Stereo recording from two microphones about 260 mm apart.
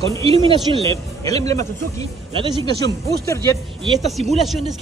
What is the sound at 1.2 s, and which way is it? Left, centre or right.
Speech, centre.